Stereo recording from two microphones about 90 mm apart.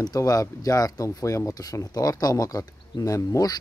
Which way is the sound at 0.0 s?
45° left (ahead or behind).